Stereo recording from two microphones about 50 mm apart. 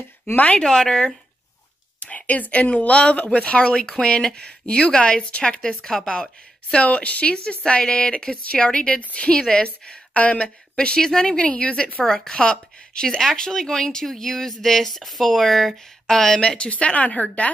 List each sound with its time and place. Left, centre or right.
0.6 s a woman's voice: centre
2.0 s a woman's voice: left